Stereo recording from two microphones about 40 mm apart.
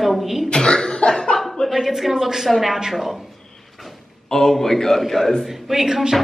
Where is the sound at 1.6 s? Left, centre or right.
Centre.